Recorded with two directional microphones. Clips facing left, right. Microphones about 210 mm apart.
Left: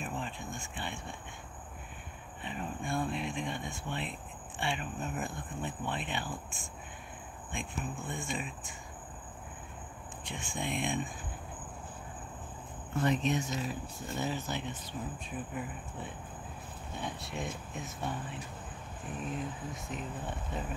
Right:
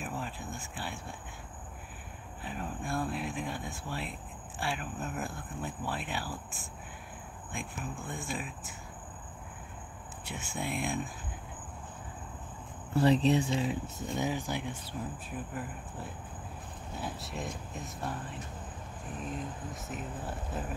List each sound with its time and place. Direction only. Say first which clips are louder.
0.0 s cricket: even; 5° right (ahead or behind)
2.4 s speech: even; centre (ahead or behind)
10.2 s speech: right 1 dB; 5° right (ahead or behind)
12.9 s speech: right 5 dB; 35° right (ahead or behind)
14.1 s speech: right 2 dB; 15° right (ahead or behind)